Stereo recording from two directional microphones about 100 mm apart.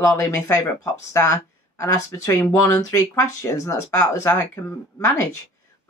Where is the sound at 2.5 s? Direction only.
25° left (ahead or behind).